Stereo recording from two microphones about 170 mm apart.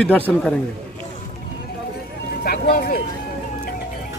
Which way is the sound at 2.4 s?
60° left (ahead or behind).